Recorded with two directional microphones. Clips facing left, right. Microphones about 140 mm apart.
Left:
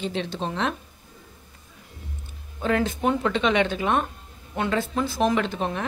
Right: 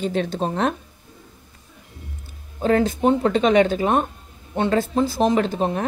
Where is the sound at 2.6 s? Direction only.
35° right (ahead or behind).